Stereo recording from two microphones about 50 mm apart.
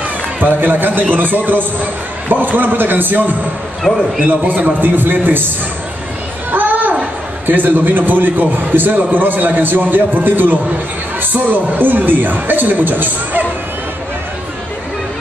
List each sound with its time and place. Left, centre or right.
0.4 s a man's voice: right
3.9 s a man's voice: left
4.3 s a man's voice: right
6.5 s a sound: right
7.4 s a man's voice: right